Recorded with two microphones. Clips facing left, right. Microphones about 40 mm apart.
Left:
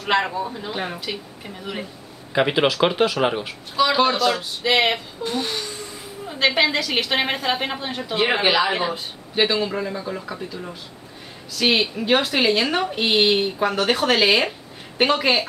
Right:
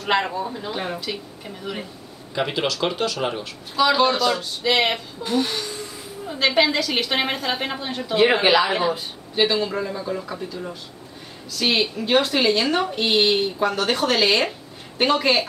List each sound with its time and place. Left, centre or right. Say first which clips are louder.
0.0 s a woman's voice: left 1 dB; centre
2.3 s speech: left 5 dB; left
3.7 s a woman's voice: even; centre